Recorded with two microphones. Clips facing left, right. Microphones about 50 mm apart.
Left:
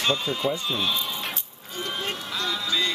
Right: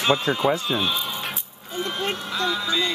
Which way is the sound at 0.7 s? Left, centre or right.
Centre.